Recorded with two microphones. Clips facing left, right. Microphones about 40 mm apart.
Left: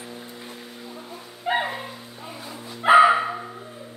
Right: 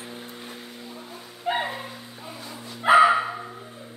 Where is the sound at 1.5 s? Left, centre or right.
Centre.